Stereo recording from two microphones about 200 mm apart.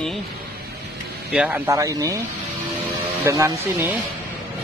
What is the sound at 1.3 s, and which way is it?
Speech, 10° right (ahead or behind).